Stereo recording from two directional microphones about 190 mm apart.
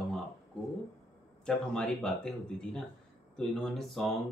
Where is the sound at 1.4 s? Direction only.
5° left (ahead or behind).